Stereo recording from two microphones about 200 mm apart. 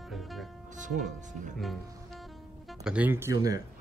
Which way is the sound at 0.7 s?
40° right (ahead or behind).